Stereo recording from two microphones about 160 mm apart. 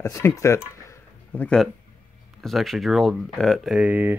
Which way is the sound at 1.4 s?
5° left (ahead or behind).